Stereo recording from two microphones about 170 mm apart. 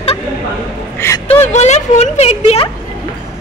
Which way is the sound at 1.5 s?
40° left (ahead or behind).